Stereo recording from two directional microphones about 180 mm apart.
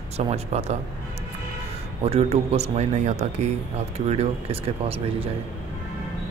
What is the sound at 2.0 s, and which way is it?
Speech, 35° right (ahead or behind).